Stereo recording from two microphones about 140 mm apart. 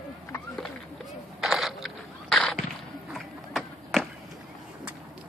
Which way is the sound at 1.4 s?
Centre (ahead or behind).